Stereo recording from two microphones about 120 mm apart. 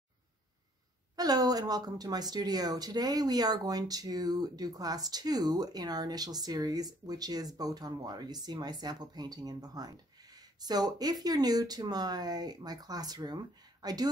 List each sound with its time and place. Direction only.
1.1 s speech: 30° right (ahead or behind)